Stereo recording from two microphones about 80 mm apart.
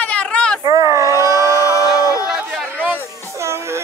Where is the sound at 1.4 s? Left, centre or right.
Left.